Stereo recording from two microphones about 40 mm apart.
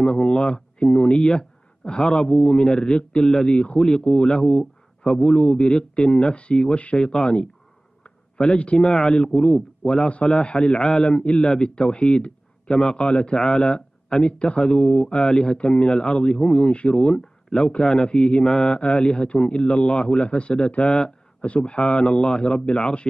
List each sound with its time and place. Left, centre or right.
0.0 s speech: left
3.2 s a man's voice: centre
3.4 s speech: left
8.4 s a man's voice: centre; by 23.0 s left